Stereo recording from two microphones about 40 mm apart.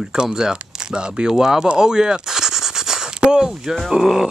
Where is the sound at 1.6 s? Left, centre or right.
Centre.